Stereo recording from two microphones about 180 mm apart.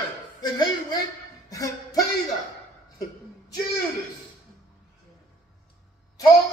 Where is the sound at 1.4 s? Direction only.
20° left (ahead or behind).